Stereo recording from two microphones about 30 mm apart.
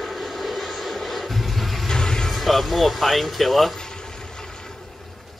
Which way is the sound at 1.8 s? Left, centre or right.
Left.